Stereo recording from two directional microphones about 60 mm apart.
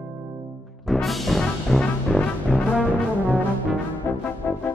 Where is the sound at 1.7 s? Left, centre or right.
Centre.